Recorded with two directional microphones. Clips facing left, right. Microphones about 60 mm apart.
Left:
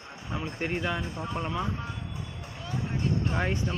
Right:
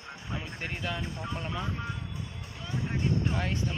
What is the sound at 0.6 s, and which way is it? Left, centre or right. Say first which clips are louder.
Speech: left 6 dB; centre.